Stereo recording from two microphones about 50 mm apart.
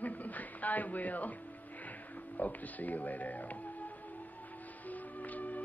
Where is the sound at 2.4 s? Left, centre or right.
Left.